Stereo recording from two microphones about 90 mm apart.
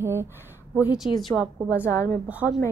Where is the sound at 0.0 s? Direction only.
30° right (ahead or behind).